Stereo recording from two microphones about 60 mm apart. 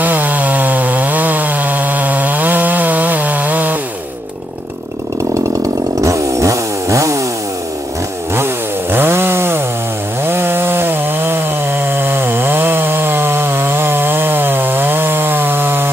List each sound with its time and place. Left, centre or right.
0.0 s chainsaw: right
5.9 s chainsaw: right
8.9 s chainsaw: right